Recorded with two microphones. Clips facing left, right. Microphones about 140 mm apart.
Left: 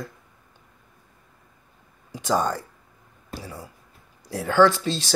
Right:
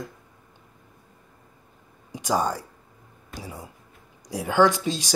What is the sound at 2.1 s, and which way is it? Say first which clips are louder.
Speech: left 1 dB; 10° right (ahead or behind).